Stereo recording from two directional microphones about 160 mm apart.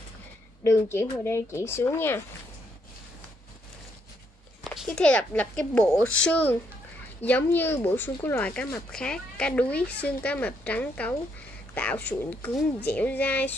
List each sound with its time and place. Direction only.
0.7 s speech: 15° left (ahead or behind)
4.6 s speech: 5° left (ahead or behind)